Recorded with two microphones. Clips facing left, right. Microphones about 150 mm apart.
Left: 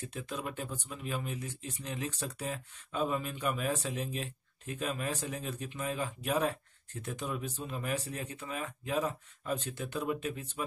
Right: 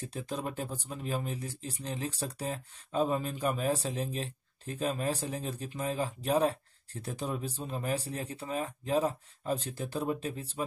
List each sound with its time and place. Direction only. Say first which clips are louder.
0.0 s speech: right 3 dB; 35° right (ahead or behind)